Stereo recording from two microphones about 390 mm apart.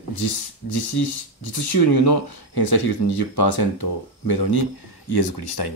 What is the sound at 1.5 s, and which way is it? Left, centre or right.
Speech, left.